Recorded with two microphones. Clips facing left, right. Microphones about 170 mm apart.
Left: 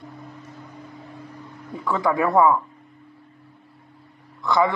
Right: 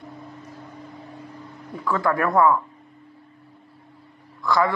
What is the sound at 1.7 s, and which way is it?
Speech, 20° left (ahead or behind).